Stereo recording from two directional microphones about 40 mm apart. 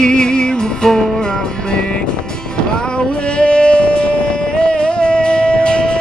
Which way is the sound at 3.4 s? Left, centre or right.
Left.